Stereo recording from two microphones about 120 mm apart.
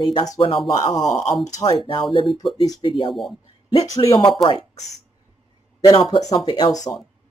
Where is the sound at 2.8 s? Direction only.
45° left (ahead or behind).